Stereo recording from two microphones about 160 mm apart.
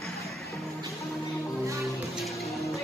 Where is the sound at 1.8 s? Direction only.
Centre (ahead or behind).